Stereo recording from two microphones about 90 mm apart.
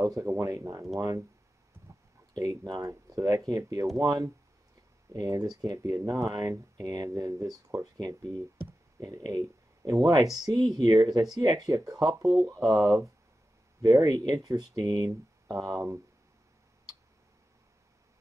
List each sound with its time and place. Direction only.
0.0 s speech: 40° right (ahead or behind)
2.3 s speech: 45° right (ahead or behind)